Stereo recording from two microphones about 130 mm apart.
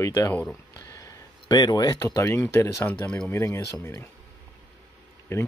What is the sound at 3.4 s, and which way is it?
Speech, 20° left (ahead or behind).